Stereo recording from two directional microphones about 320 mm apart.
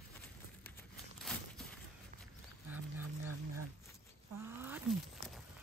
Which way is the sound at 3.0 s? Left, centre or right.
Right.